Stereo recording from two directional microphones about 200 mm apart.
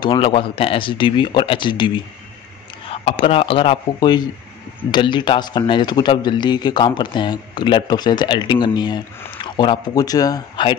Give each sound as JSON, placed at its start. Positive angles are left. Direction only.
{"t": 0.0, "sound": "speech", "side_deg": 25}
{"t": 2.9, "sound": "speech", "side_deg": 30}